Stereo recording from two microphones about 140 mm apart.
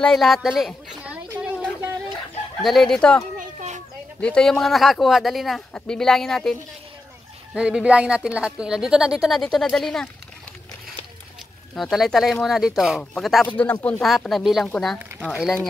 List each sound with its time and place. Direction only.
0.0 s speech: centre (ahead or behind)
1.4 s a sound: 10° right (ahead or behind)
2.6 s speech: centre (ahead or behind)
3.3 s children playing: 60° right (ahead or behind)
4.2 s speech: 5° left (ahead or behind)
11.7 s speech: centre (ahead or behind)
13.5 s speech: 10° left (ahead or behind)
14.0 s speech: centre (ahead or behind)